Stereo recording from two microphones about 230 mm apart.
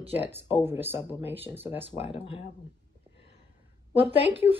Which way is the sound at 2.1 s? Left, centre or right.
Left.